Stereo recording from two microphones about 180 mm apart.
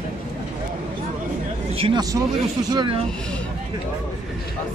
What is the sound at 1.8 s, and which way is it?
Speech, 30° right (ahead or behind).